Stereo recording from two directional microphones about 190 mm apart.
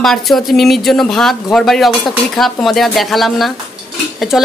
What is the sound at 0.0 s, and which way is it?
Speech, centre (ahead or behind).